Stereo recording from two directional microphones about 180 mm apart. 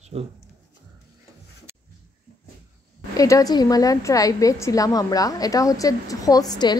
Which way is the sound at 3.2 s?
20° left (ahead or behind).